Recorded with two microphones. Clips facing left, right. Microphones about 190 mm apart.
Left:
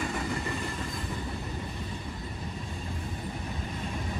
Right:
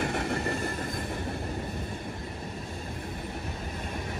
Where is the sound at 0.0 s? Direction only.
60° right (ahead or behind).